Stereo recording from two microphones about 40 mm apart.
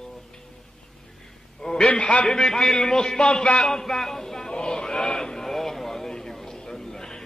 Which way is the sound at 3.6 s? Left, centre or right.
Centre.